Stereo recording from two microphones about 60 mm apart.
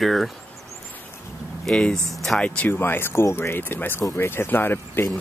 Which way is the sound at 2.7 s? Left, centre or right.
Left.